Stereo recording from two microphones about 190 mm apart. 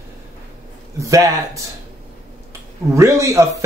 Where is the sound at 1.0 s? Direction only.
15° right (ahead or behind).